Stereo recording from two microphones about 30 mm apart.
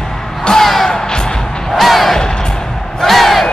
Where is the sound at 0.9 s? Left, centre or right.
Left.